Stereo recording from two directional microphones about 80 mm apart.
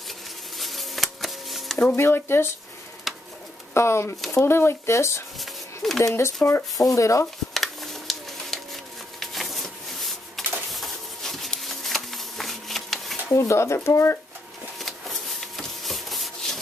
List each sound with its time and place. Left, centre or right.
0.6 s a sound: centre
2.0 s speech: left
3.1 s bird: centre
3.7 s speech: left
5.4 s a sound: centre
6.0 s speech: left
7.5 s a sound: centre
13.3 s speech: left
14.8 s rub: centre